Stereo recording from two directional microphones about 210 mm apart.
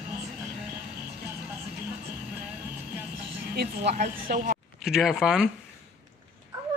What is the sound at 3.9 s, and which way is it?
Speech, 35° right (ahead or behind).